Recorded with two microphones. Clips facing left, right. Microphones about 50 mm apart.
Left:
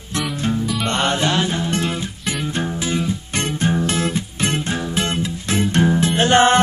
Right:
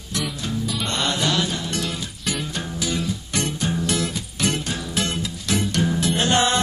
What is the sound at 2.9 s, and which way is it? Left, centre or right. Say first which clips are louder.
Music: left 4 dB; left.